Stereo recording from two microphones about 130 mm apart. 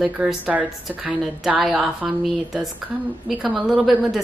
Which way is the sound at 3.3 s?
Centre (ahead or behind).